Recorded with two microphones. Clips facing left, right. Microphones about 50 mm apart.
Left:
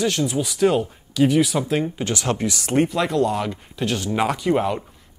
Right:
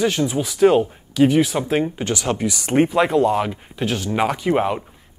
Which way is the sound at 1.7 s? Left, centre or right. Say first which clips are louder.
Right 5 dB; centre.